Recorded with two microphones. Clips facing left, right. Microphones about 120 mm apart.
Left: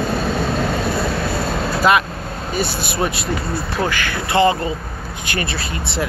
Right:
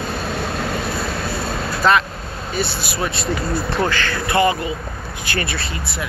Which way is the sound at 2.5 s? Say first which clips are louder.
Left 1 dB; 15° left (ahead or behind).